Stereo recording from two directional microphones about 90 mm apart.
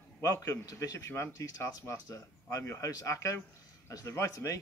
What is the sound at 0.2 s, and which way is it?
A man's voice, 35° left (ahead or behind).